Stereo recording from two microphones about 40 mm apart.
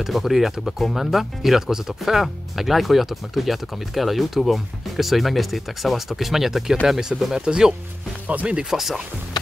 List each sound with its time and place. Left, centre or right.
0.0 s speech: centre